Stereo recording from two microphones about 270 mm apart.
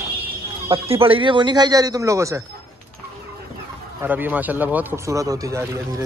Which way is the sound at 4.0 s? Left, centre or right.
Centre.